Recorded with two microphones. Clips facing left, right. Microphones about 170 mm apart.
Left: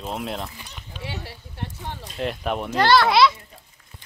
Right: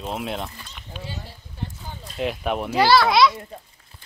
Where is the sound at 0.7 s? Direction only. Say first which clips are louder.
Left 1 dB; 70° left (ahead or behind).